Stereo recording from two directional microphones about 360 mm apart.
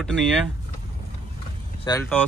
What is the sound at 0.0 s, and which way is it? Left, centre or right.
Speech, centre.